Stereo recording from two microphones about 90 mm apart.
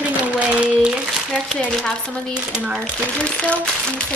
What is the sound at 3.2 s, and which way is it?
Speech, 10° left (ahead or behind).